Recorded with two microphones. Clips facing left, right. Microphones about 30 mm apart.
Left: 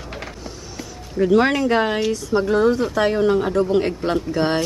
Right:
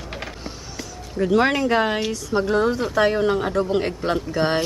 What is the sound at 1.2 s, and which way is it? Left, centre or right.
Speech, centre.